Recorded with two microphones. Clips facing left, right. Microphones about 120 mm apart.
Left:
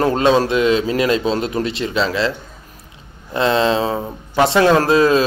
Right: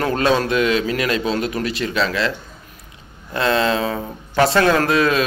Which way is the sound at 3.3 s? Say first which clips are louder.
Left 2 dB; 25° left (ahead or behind).